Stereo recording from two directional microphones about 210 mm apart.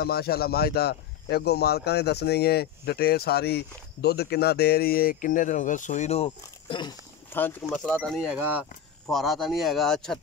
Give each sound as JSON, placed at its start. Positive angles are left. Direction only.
{"t": 0.0, "sound": "speech", "side_deg": 50}
{"t": 7.3, "sound": "speech", "side_deg": 5}
{"t": 8.3, "sound": "speech", "side_deg": -10}